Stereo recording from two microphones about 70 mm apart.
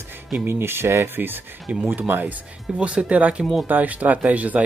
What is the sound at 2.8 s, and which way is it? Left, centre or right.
Speech, centre.